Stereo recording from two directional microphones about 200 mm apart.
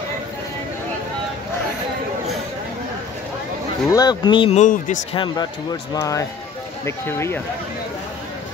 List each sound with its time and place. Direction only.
3.9 s speech: 20° left (ahead or behind)
4.6 s speech: 40° left (ahead or behind)
5.1 s speech: 25° left (ahead or behind)